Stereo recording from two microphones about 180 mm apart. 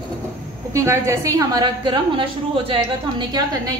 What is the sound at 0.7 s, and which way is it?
A woman's voice, 15° right (ahead or behind).